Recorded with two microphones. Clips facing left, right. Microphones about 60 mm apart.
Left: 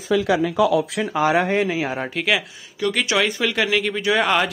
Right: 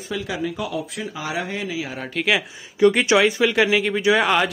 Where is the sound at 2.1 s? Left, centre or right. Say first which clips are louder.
Right 2 dB; centre.